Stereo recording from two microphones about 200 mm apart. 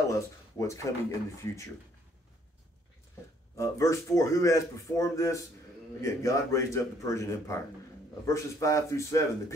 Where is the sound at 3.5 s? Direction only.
15° left (ahead or behind).